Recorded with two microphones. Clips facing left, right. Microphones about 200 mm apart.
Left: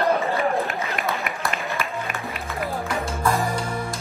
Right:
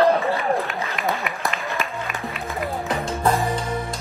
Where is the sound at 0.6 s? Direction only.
Centre (ahead or behind).